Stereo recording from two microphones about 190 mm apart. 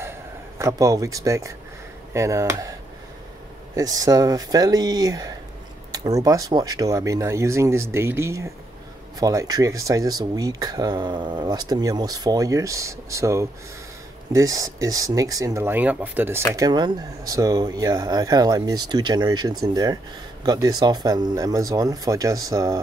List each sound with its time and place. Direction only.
0.0 s a sound: 15° right (ahead or behind)
2.1 s speech: 15° right (ahead or behind)
3.7 s speech: 20° right (ahead or behind)
16.5 s speech: 20° right (ahead or behind)